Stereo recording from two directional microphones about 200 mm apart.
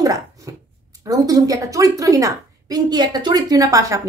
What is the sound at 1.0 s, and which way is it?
A woman's voice, 20° right (ahead or behind).